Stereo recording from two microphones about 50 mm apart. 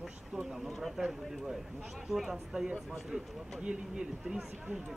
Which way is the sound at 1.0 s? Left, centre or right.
Centre.